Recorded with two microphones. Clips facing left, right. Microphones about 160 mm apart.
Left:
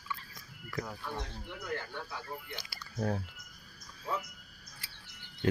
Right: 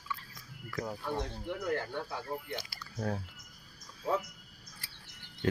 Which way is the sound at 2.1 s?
45° right (ahead or behind).